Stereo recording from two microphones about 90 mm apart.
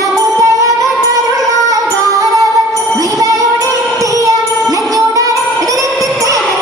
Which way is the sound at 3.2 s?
40° right (ahead or behind).